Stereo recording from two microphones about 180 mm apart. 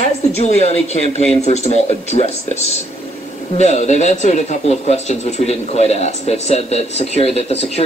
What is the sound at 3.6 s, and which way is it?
Speech, 40° left (ahead or behind).